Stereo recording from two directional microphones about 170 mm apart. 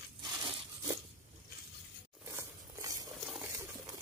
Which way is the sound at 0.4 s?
25° right (ahead or behind).